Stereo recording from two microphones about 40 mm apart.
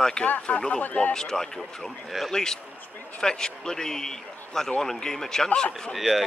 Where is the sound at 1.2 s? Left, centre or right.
Centre.